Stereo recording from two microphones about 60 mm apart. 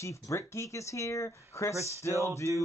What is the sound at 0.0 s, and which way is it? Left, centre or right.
Speech, left.